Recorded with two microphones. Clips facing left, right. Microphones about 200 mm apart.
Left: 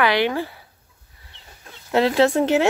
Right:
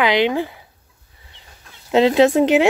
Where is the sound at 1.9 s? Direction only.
20° right (ahead or behind).